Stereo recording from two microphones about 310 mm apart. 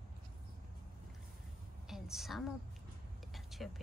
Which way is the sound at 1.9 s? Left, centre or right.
Centre.